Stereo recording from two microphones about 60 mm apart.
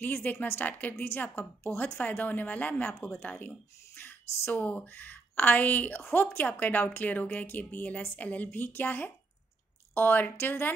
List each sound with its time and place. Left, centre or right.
0.0 s speech: left